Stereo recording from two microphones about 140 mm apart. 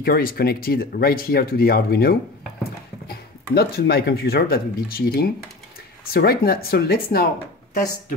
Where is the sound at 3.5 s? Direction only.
90° left.